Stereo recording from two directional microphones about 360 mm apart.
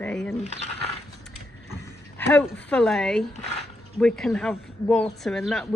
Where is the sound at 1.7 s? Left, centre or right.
Centre.